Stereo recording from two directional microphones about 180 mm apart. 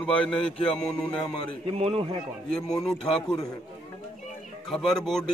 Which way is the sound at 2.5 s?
5° left (ahead or behind).